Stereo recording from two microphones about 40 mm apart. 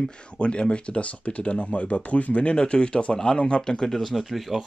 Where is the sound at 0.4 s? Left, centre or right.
Left.